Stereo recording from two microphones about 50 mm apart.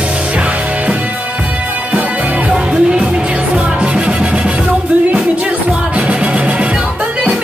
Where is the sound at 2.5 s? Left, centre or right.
Centre.